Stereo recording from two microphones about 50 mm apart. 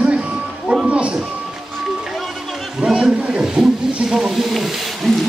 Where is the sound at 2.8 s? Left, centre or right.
Right; by 5.2 s centre.